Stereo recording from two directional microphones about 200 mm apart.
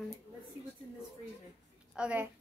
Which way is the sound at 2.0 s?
5° right (ahead or behind).